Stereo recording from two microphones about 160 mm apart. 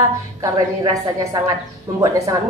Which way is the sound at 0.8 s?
20° right (ahead or behind).